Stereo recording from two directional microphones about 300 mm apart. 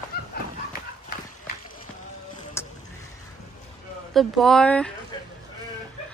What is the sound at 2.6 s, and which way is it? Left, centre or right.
Vehicle, centre.